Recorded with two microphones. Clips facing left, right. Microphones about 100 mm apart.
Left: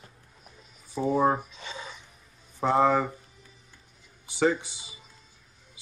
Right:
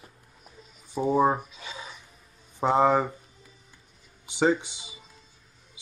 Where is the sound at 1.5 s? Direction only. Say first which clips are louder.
Left 1 dB; 5° right (ahead or behind).